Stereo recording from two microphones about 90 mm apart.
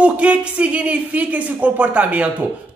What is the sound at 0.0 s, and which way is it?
Speech, 15° right (ahead or behind).